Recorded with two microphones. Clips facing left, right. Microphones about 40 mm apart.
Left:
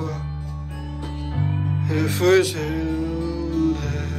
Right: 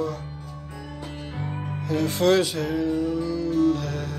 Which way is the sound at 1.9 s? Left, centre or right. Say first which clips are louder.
Left 2 dB; left.